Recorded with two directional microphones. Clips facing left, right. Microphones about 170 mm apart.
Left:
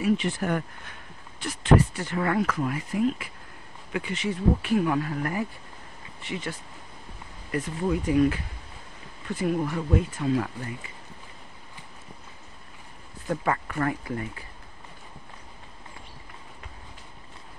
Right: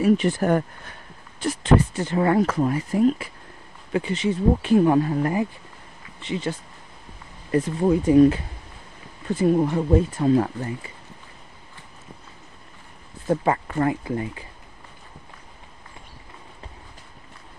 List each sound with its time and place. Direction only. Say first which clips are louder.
0.0 s speech: right 6 dB; 40° right (ahead or behind)
2.0 s speech: right 6 dB; 30° right (ahead or behind)
7.5 s speech: right 7 dB; 30° right (ahead or behind)
13.3 s speech: right 5 dB; 25° right (ahead or behind)